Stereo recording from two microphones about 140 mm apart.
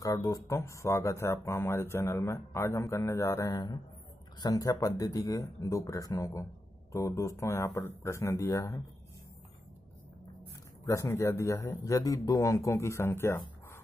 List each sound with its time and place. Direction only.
0.0 s speech: 25° left (ahead or behind)
10.9 s speech: 20° left (ahead or behind)